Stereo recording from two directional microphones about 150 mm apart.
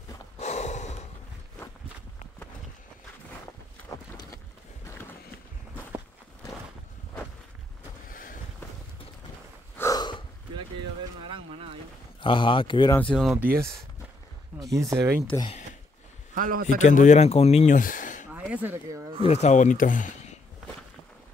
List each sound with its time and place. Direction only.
0.4 s gasp: 50° left (ahead or behind)
8.1 s boat: 65° left (ahead or behind)
9.8 s gasp: 25° left (ahead or behind)
12.2 s speech: 35° left (ahead or behind)
13.0 s speech: 5° left (ahead or behind)
14.6 s speech: 20° right (ahead or behind)
16.3 s speech: 70° right (ahead or behind)
16.6 s speech: 55° left (ahead or behind)
18.3 s a sound: 10° right (ahead or behind)
19.2 s speech: 45° left (ahead or behind)